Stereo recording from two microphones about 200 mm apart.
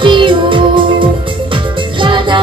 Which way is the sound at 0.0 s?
25° right (ahead or behind).